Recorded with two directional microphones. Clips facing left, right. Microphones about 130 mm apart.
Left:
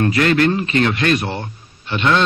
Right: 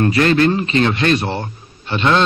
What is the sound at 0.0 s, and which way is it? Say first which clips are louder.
Speech: right 1 dB; 30° right (ahead or behind).